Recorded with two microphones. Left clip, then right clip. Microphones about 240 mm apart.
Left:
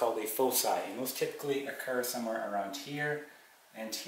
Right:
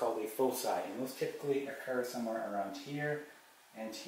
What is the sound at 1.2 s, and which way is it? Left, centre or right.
Speech, centre.